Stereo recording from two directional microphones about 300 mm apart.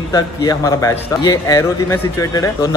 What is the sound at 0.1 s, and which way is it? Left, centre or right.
A man's voice, centre.